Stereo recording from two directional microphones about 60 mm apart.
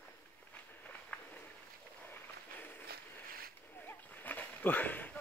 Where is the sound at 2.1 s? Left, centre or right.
Left.